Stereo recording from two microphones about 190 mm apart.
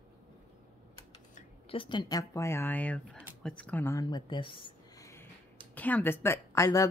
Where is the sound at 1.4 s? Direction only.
30° left (ahead or behind).